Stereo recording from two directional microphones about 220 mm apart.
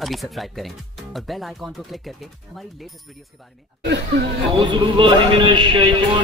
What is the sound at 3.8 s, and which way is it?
Speech, 50° right (ahead or behind).